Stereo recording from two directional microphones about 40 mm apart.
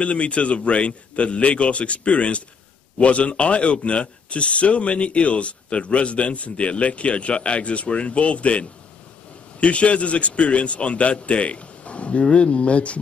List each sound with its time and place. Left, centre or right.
0.0 s speech: left